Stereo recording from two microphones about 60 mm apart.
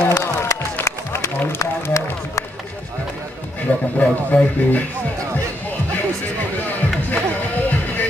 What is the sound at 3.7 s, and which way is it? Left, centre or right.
Speech, left.